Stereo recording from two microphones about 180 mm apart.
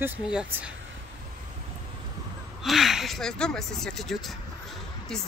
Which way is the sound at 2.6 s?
Centre (ahead or behind).